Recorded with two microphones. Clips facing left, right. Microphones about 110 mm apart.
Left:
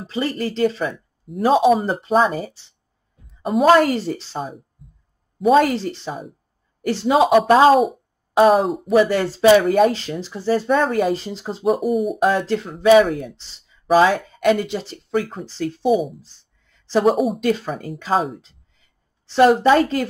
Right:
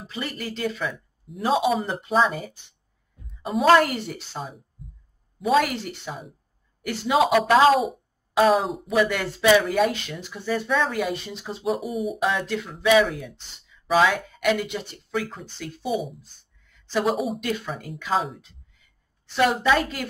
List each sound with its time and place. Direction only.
0.0 s speech: 35° left (ahead or behind)
3.7 s speech: 35° left (ahead or behind)
5.5 s speech: 35° left (ahead or behind)
8.6 s speech: centre (ahead or behind)
8.9 s speech: 35° left (ahead or behind)
10.7 s speech: 45° left (ahead or behind)
11.8 s speech: centre (ahead or behind)
12.2 s speech: 40° left (ahead or behind)
13.0 s speech: 50° left (ahead or behind)
15.4 s speech: 35° left (ahead or behind)
15.9 s speech: centre (ahead or behind)
16.9 s speech: 35° left (ahead or behind)
17.6 s speech: 45° left (ahead or behind)